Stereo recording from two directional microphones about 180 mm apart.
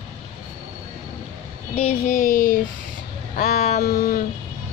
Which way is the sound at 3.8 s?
55° left (ahead or behind).